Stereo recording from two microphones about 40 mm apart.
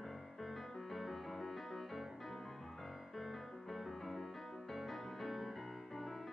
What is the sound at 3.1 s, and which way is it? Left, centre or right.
Music, centre.